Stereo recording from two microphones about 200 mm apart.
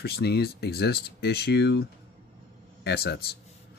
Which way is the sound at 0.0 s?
55° left (ahead or behind).